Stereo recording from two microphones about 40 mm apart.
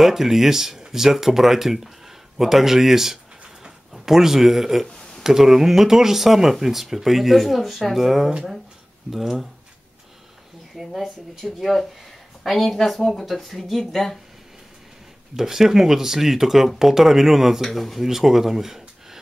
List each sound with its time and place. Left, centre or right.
0.0 s speech: centre
4.8 s a sound: centre
5.2 s speech: centre
10.8 s speech: centre
15.3 s speech: centre